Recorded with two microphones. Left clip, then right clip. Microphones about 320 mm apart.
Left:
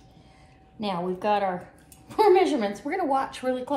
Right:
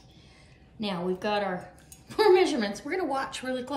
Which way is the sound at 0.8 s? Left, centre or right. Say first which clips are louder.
Left 3 dB; centre.